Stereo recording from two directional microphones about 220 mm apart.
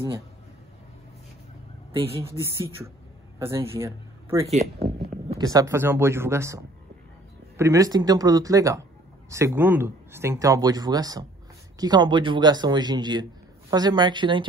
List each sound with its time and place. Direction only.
1.9 s speech: 25° right (ahead or behind)
3.3 s a man's voice: 10° right (ahead or behind)